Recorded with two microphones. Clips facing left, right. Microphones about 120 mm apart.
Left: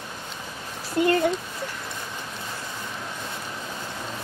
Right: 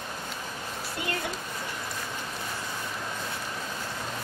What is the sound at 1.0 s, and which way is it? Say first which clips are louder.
Speech: left 14 dB; 45° left (ahead or behind).